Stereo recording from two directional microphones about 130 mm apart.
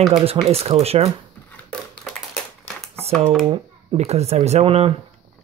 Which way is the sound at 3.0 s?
50° right (ahead or behind).